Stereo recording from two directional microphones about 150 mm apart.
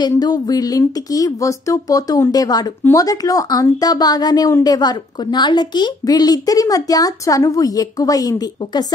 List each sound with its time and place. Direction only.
0.2 s a woman's voice: 25° left (ahead or behind)